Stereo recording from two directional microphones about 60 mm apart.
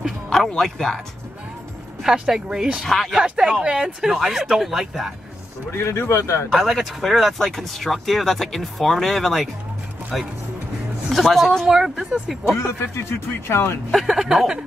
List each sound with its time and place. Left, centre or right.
0.3 s speech: centre
2.0 s speech: centre
2.9 s speech: centre
3.2 s speech: centre
5.7 s speech: left
6.5 s speech: centre
13.5 s speech: left
13.9 s speech: centre